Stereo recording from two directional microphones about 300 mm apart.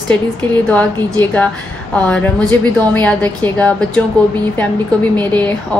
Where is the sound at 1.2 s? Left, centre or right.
Centre.